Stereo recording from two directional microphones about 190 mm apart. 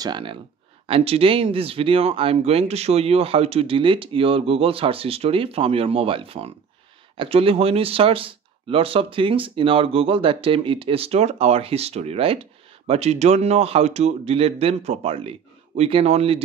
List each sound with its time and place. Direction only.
0.0 s speech: 25° right (ahead or behind)